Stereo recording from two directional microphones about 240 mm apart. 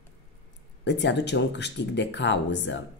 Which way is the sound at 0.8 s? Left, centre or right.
Left.